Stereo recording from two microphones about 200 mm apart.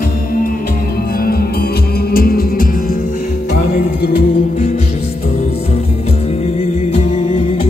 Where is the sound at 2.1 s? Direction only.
50° left (ahead or behind).